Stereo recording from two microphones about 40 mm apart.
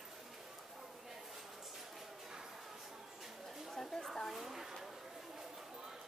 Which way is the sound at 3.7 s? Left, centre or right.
Centre.